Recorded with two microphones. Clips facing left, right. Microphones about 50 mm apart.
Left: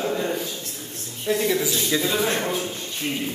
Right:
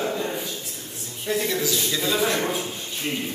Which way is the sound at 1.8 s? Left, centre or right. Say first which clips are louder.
Left 2 dB; centre.